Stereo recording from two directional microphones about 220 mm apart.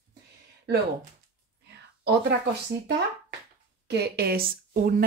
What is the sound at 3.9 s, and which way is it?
Speech, 45° right (ahead or behind).